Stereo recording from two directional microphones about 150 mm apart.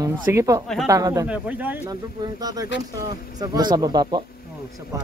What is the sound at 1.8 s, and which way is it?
Speech, 25° right (ahead or behind).